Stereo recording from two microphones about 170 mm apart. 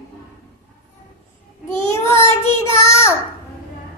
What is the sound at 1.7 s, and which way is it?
Child singing, 15° left (ahead or behind).